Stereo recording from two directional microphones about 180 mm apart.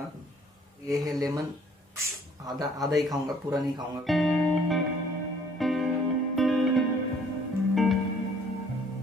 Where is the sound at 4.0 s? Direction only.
Centre (ahead or behind).